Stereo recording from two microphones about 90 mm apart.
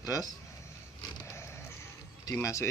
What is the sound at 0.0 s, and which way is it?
Speech, 40° left (ahead or behind).